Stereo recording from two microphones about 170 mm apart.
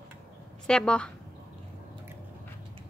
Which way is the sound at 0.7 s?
5° left (ahead or behind).